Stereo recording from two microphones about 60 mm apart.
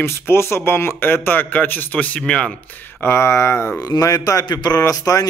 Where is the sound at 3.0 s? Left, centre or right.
Left.